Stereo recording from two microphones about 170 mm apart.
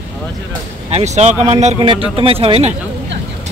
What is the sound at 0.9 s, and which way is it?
Speech, 40° right (ahead or behind).